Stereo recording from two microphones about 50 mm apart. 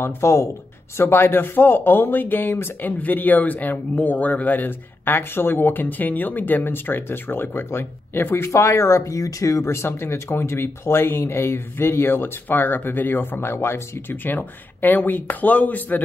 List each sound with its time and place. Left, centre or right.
0.0 s speech: left
0.9 s speech: left
8.5 s speech: left